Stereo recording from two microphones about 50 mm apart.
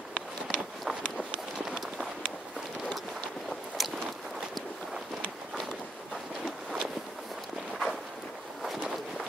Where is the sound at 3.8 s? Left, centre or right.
Centre.